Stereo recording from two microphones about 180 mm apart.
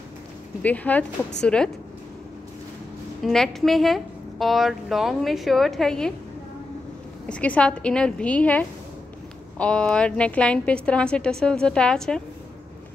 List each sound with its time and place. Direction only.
0.6 s a woman's voice: 10° left (ahead or behind)
3.3 s a woman's voice: centre (ahead or behind)
7.2 s a woman's voice: 5° left (ahead or behind)